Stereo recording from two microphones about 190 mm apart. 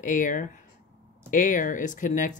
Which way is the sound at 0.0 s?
45° left (ahead or behind).